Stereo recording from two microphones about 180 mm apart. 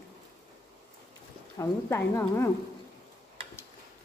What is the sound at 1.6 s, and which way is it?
Speech, 15° left (ahead or behind).